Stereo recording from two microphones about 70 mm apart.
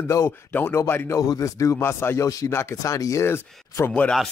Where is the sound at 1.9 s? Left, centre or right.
Left.